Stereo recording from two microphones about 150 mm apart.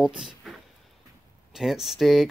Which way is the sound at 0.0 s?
5° right (ahead or behind).